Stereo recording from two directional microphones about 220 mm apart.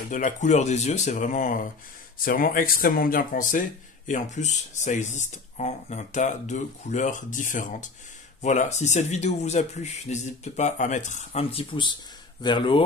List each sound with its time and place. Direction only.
0.1 s speech: 35° left (ahead or behind)